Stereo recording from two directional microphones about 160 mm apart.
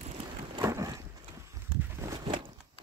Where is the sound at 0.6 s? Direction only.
20° right (ahead or behind).